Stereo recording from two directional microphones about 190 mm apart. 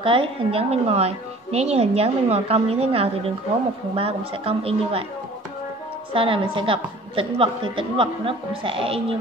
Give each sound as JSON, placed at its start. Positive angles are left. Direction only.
{"t": 0.0, "sound": "a woman's voice", "side_deg": -30}
{"t": 6.1, "sound": "a woman's voice", "side_deg": -25}